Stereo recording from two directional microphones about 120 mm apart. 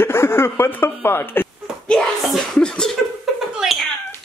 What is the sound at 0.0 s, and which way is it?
Speech, 20° left (ahead or behind).